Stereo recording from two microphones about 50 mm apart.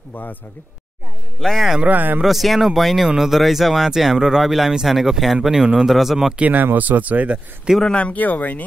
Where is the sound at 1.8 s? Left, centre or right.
Right.